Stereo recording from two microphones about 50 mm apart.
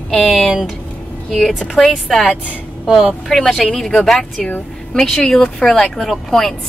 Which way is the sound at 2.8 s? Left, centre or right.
Centre.